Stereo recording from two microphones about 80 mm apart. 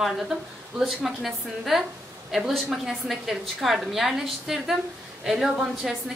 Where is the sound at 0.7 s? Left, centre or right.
Centre.